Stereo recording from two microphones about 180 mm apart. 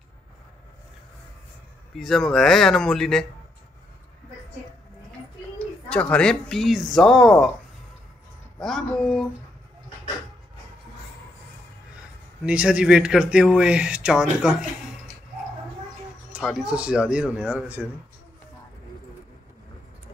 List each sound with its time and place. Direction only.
2.0 s speech: centre (ahead or behind)
5.9 s speech: 5° left (ahead or behind)
8.5 s speech: 5° left (ahead or behind)
12.4 s speech: 5° right (ahead or behind)
16.3 s speech: 5° right (ahead or behind)